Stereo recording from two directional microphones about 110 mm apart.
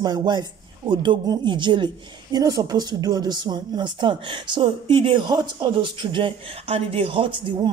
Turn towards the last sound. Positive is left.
turn(degrees=-50)  # may be behind; listen again after turning